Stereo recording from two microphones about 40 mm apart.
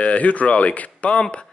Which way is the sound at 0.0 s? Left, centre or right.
Left.